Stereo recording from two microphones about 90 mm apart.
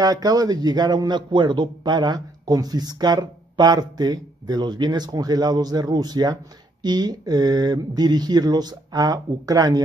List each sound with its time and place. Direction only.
0.0 s a man's voice: 45° right (ahead or behind)